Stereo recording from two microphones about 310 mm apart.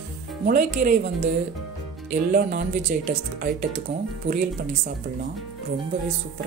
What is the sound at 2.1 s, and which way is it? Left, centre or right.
Speech, right.